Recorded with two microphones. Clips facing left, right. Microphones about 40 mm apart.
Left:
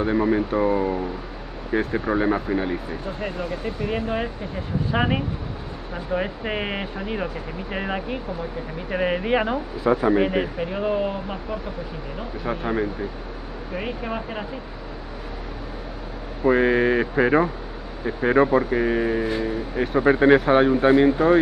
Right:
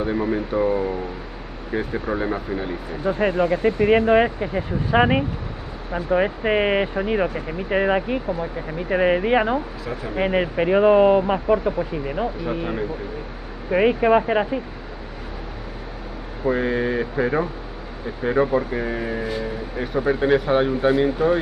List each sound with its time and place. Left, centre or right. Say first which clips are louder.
0.0 s speech: left 2 dB; centre
3.1 s speech: right 11 dB; right
4.9 s speech: right 6 dB; centre
10.5 s speech: right 9 dB; right
13.7 s speech: right 13 dB; right
16.4 s speech: left 3 dB; left; by 20.0 s centre
20.0 s speech: left 3 dB; left
20.4 s speech: left 2 dB; centre